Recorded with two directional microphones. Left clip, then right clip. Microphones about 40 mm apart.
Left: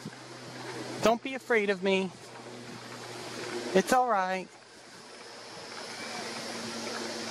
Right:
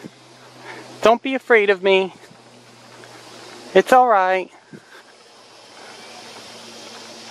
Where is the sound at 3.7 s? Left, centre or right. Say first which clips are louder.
Right 13 dB; right.